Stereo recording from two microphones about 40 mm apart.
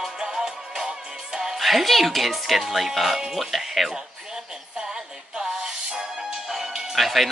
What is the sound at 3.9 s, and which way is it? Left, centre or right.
Music, centre.